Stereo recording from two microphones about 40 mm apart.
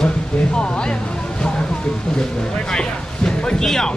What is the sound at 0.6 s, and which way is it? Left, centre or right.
Music, left.